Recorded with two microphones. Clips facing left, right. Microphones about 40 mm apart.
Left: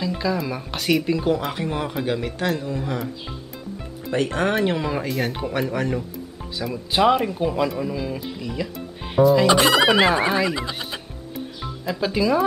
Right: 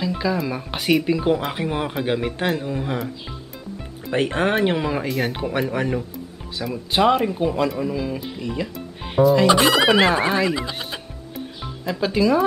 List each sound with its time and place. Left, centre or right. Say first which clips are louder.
0.0 s speech: right 1 dB; centre
4.1 s speech: right 1 dB; right; by 12.4 s centre